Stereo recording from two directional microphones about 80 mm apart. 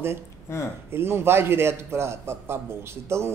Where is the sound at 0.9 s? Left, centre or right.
Right.